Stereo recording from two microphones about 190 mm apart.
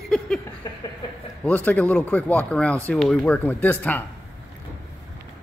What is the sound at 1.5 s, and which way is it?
Speech, 10° left (ahead or behind).